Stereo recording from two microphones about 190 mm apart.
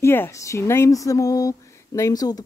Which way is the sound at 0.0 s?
15° left (ahead or behind).